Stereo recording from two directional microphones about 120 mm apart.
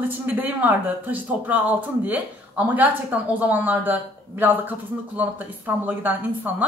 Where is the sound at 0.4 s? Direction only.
15° right (ahead or behind).